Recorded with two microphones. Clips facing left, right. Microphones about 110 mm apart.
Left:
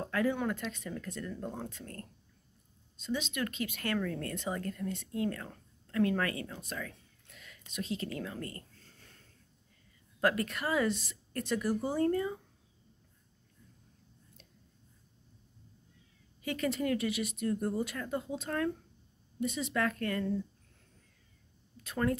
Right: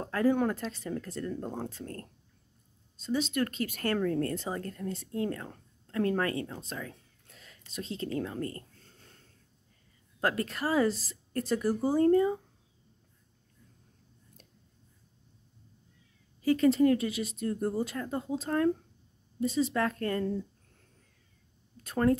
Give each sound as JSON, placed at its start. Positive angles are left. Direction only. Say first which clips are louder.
{"t": 0.0, "sound": "speech", "louder": "right 5 dB", "side_deg": -35}
{"t": 10.2, "sound": "speech", "louder": "right 1 dB", "side_deg": -30}
{"t": 16.4, "sound": "speech", "louder": "right 9 dB", "side_deg": -30}
{"t": 21.8, "sound": "speech", "louder": "right 6 dB", "side_deg": -35}